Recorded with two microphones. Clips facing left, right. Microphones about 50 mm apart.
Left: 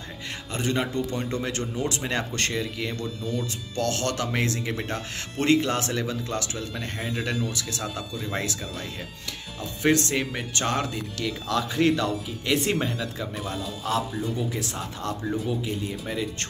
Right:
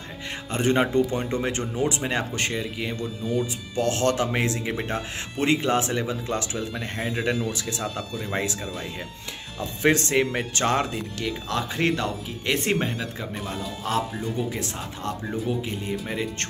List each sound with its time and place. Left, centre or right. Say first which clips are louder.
0.5 s speech: right 5 dB; right
2.0 s speech: right 1 dB; centre
9.6 s speech: right 1 dB; right
14.6 s speech: even; right